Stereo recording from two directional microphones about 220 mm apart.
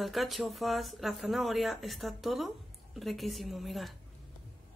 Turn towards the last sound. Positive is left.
turn(degrees=0)  # may be behind; listen again after turning